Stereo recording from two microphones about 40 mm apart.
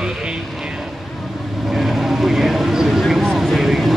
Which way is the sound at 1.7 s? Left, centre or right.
Centre.